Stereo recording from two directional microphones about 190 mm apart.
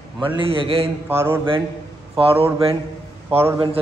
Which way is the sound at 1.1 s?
10° right (ahead or behind).